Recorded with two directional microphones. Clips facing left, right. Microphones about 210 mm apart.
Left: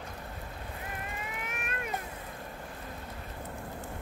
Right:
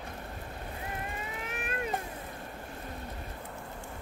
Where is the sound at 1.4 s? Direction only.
30° right (ahead or behind).